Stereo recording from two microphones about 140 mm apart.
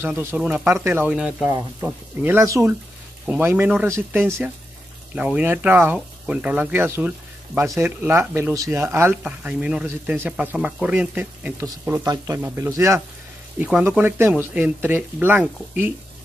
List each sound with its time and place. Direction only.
0.0 s speech: 15° right (ahead or behind)
1.5 s speech: 15° right (ahead or behind)
13.6 s speech: 5° right (ahead or behind)